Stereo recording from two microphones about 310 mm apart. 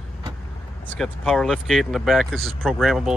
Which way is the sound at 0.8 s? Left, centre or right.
Centre.